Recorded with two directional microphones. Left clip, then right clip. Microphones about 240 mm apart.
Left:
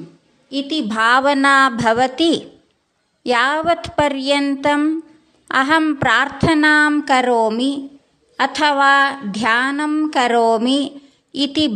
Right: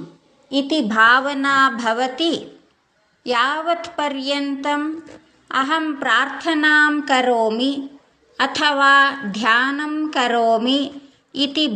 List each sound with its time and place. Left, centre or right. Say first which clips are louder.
0.5 s a woman's voice: right 2 dB; centre
0.8 s a woman's voice: left 1 dB; left